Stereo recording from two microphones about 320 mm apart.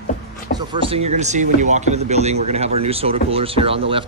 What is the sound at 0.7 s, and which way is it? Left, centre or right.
Speech, centre.